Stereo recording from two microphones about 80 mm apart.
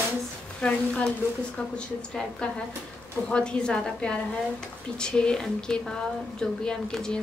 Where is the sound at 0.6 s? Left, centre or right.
Centre.